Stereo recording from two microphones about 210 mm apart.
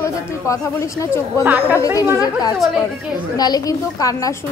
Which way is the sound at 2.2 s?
15° left (ahead or behind).